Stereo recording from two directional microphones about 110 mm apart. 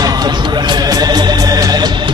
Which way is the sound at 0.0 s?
40° right (ahead or behind).